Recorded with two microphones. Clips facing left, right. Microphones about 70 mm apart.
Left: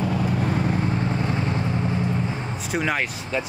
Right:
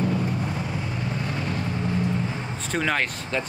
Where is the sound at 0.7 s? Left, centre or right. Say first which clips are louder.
Left 5 dB; left.